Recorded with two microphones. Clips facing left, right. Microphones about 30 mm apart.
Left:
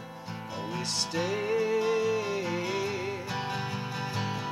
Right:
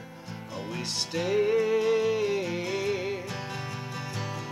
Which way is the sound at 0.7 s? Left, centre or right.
Centre.